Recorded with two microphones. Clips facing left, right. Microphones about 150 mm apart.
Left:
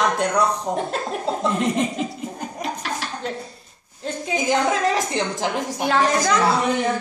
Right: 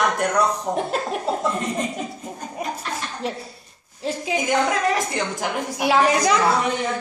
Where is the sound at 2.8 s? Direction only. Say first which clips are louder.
Left 1 dB; 90° left.